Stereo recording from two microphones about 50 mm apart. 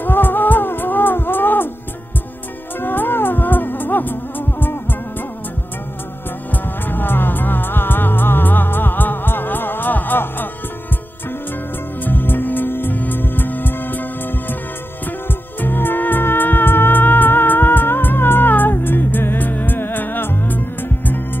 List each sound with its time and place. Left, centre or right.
0.0 s music: left
2.8 s music: left
6.5 s music: left
12.0 s music: left
15.6 s music: left